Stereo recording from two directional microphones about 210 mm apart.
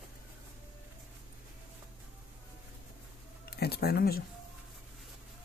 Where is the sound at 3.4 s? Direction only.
50° left (ahead or behind).